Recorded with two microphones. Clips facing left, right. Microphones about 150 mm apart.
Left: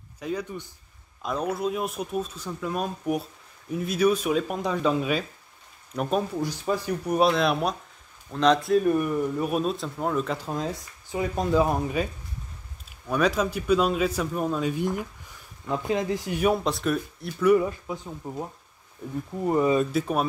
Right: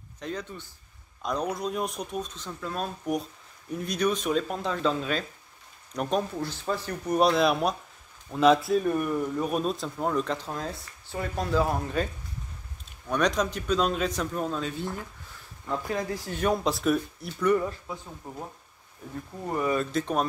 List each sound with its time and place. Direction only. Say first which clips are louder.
0.2 s speech: left 4 dB; 10° left (ahead or behind)
13.1 s speech: left 2 dB; 5° left (ahead or behind)
16.6 s speech: right 1 dB; centre (ahead or behind); by 18.3 s 15° left (ahead or behind)
19.4 s speech: left 5 dB; 20° left (ahead or behind)
19.9 s speech: left 2 dB; 5° left (ahead or behind)